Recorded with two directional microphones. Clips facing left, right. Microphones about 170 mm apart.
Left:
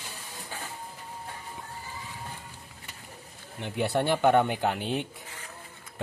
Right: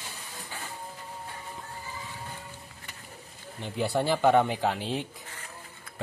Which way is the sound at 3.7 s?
Centre (ahead or behind).